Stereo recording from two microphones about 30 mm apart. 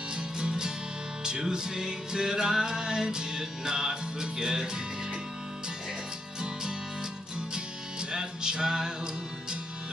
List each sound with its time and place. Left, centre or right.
0.1 s music: right
8.1 s music: right